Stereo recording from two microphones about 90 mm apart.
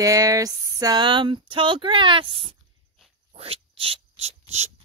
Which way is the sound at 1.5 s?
70° right (ahead or behind).